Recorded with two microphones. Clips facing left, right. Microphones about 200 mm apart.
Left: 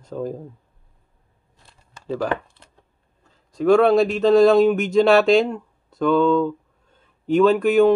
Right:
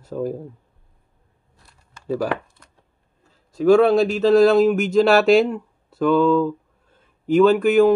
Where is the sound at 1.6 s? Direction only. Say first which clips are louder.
Left 2 dB; 25° left (ahead or behind).